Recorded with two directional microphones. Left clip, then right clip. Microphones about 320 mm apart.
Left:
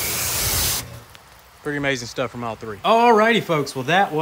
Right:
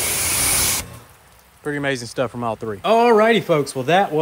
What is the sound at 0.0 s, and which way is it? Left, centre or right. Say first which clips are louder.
Spray: right 2 dB; right.